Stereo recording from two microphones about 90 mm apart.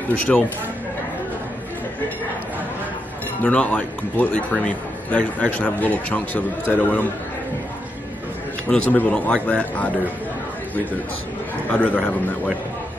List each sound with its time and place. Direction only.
0.1 s a man's voice: 15° left (ahead or behind)
3.4 s a man's voice: 15° left (ahead or behind)
8.6 s a man's voice: 10° left (ahead or behind)
11.7 s a man's voice: 15° left (ahead or behind)